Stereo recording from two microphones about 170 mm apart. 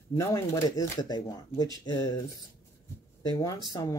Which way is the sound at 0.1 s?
20° left (ahead or behind).